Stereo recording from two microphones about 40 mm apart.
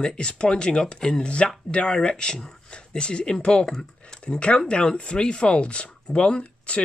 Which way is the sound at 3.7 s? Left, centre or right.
Centre.